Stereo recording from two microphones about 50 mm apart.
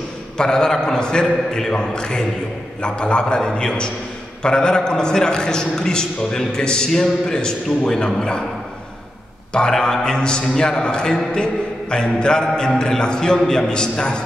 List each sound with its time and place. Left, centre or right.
0.4 s a man's voice: centre
9.5 s a man's voice: centre